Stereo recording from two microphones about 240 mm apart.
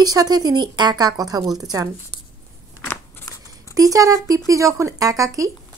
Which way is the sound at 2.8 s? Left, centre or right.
Centre.